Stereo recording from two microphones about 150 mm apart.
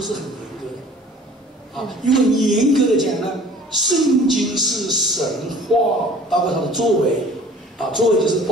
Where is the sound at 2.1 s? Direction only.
Centre (ahead or behind).